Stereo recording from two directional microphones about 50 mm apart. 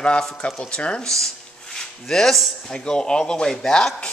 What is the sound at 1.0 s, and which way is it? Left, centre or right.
Speech, centre.